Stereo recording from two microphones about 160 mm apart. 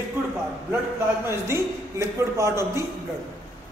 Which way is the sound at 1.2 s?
15° right (ahead or behind).